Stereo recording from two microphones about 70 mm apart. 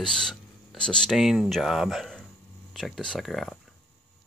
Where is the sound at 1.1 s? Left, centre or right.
Centre.